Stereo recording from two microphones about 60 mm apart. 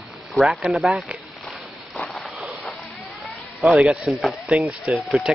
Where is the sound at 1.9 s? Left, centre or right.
Centre.